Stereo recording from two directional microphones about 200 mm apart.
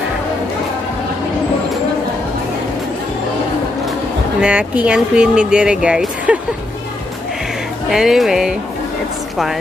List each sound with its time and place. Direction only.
4.4 s speech: 5° right (ahead or behind)
7.9 s speech: centre (ahead or behind)